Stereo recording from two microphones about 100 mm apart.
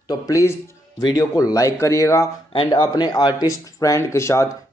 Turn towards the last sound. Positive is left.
turn(degrees=30)  # may be behind; listen again after turning